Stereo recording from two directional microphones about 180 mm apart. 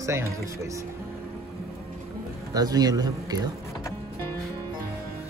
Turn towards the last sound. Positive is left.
turn(degrees=-20)  # may be behind; listen again after turning